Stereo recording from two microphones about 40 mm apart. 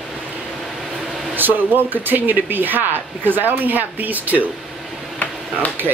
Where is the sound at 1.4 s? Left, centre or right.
Right.